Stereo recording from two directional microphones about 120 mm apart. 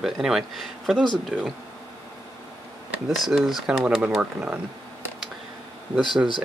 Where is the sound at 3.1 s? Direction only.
Centre (ahead or behind).